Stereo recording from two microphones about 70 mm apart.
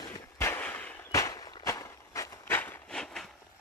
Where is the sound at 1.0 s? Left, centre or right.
Left.